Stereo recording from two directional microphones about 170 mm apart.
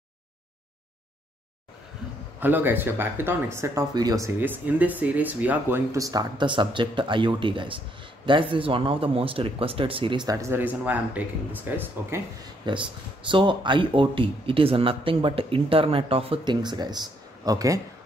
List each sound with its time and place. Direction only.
2.4 s speech: 10° right (ahead or behind)
12.7 s speech: 25° right (ahead or behind)